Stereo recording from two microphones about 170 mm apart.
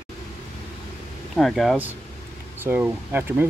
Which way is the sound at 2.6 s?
10° right (ahead or behind).